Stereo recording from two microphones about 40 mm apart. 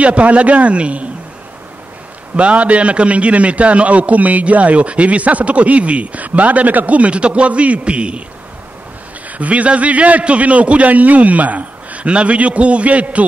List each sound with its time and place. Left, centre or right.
0.0 s a man's voice: right
2.3 s a man's voice: right
9.4 s a man's voice: right